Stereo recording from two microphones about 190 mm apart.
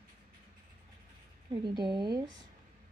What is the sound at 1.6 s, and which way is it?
Speech, 25° right (ahead or behind).